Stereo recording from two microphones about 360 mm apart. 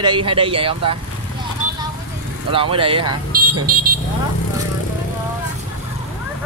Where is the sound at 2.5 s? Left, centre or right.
Centre.